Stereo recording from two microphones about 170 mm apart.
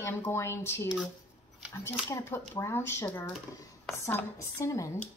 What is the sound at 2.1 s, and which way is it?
A woman's voice, 15° left (ahead or behind).